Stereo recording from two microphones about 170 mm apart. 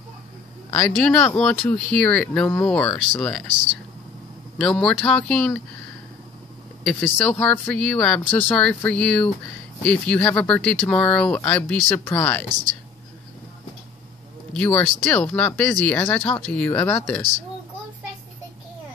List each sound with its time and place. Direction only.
0.7 s speech: 10° left (ahead or behind)
4.6 s speech: 5° left (ahead or behind)
6.8 s speech: 5° left (ahead or behind)
12.4 s speech: 25° right (ahead or behind)
14.5 s speech: 10° left (ahead or behind)